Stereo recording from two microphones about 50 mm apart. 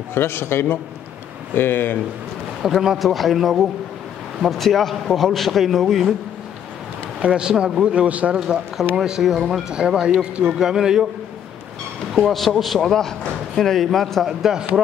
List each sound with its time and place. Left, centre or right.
0.1 s a man's voice: left
1.5 s speech: left
2.6 s a man's voice: centre
7.2 s speech: centre
8.9 s speech: centre
12.2 s a man's voice: centre
14.2 s speech: centre